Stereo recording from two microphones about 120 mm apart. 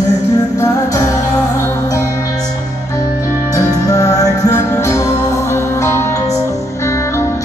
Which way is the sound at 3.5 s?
30° left (ahead or behind).